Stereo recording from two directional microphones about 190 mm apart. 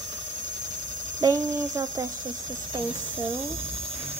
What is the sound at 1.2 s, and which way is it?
Speech, 20° right (ahead or behind).